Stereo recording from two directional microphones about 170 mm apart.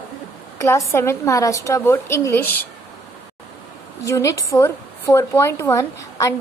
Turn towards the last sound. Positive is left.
turn(degrees=20)  # may be behind; listen again after turning